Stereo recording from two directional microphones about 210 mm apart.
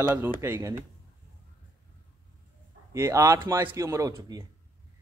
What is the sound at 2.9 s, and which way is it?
A man's voice, 15° right (ahead or behind).